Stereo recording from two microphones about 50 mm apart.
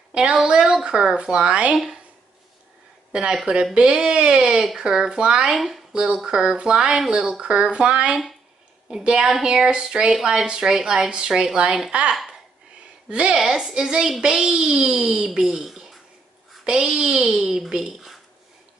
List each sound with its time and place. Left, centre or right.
0.1 s a woman's voice: centre
3.1 s speech: centre
5.6 s speech: centre
13.1 s speech: centre